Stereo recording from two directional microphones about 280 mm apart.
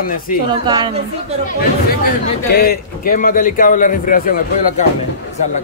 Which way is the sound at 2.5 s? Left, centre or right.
Left.